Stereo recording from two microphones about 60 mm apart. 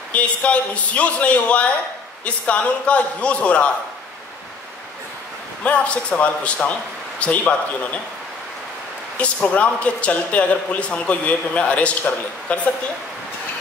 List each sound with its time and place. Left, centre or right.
0.1 s speech: left
5.6 s speech: left
9.2 s speech: left